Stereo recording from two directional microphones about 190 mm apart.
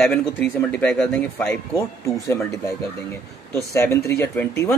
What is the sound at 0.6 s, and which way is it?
Speech, 5° left (ahead or behind).